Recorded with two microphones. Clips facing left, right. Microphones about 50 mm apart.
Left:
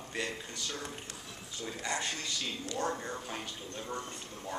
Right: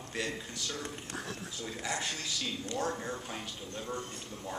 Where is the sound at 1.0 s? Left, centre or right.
Right.